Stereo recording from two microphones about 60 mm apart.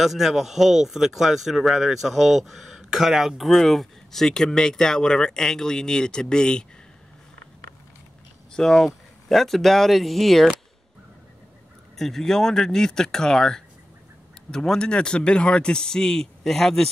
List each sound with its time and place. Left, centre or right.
0.0 s speech: centre
8.5 s speech: centre
12.0 s speech: centre